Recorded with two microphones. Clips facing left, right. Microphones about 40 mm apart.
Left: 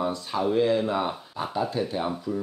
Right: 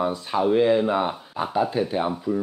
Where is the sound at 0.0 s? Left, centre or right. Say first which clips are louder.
Right 4 dB; centre.